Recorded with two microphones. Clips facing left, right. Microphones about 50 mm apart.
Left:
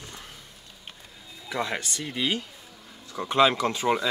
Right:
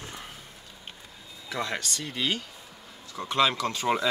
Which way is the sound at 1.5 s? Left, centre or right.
Centre.